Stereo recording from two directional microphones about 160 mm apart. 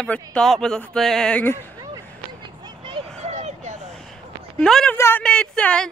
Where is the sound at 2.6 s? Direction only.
35° right (ahead or behind).